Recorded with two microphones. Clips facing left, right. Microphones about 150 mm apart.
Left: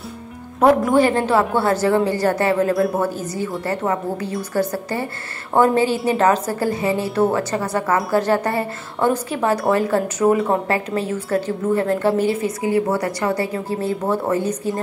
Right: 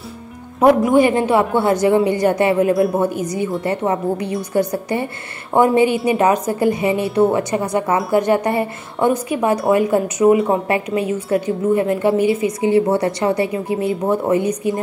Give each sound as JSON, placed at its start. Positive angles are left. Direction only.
{"t": 0.9, "sound": "a woman's voice", "side_deg": -15}
{"t": 10.7, "sound": "a woman's voice", "side_deg": -15}